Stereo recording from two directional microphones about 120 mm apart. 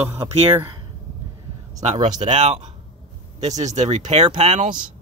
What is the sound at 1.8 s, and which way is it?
Speech, 70° right (ahead or behind).